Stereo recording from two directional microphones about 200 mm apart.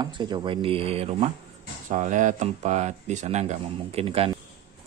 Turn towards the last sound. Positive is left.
turn(degrees=-30)  # may be behind; listen again after turning